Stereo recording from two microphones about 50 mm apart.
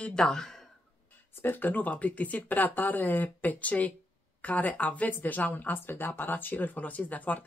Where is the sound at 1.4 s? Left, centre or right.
Left.